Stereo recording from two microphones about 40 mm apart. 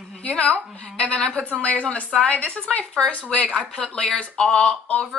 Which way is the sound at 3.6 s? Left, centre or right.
Centre.